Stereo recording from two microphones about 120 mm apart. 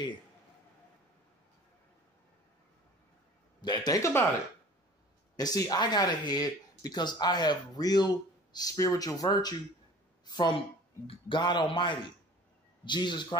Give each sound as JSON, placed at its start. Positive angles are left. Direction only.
{"t": 3.6, "sound": "speech", "side_deg": 35}
{"t": 5.3, "sound": "speech", "side_deg": 30}